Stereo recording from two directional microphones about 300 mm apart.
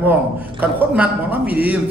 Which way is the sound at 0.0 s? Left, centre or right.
Centre.